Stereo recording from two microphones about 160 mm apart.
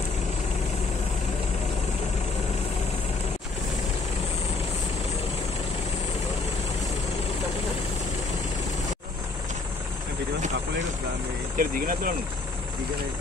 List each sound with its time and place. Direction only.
11.5 s speech: 60° right (ahead or behind)